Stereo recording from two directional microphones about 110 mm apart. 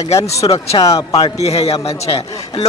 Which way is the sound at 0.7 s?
35° left (ahead or behind).